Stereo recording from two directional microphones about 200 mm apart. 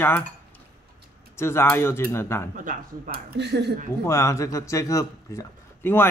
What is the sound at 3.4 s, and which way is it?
Speech, 60° right (ahead or behind).